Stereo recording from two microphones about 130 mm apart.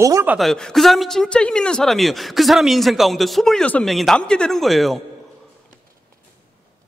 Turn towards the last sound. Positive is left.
turn(degrees=0)  # may be behind; listen again after turning